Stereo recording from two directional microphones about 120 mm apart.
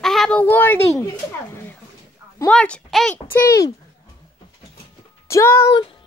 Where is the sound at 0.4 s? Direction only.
15° left (ahead or behind).